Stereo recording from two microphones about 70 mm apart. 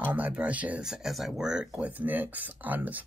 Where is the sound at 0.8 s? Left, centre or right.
Centre.